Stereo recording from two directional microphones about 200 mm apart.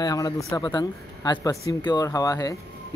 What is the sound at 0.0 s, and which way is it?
Speech, 20° left (ahead or behind).